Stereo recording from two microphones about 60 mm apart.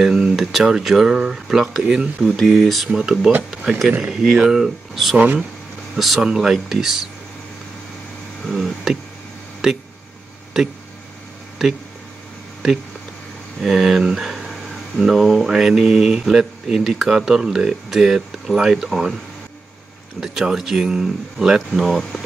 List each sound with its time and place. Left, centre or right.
0.4 s speech: centre
2.3 s speech: centre
3.0 s speech: centre
5.1 s speech: right
5.9 s speech: centre
8.5 s a sound: centre
9.6 s speech: centre
13.6 s speech: centre
20.2 s speech: centre